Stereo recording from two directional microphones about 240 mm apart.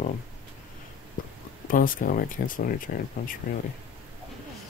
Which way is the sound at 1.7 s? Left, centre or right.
Left.